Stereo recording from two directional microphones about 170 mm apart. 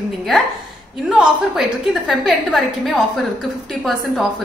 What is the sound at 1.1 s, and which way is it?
A woman's voice, 5° right (ahead or behind).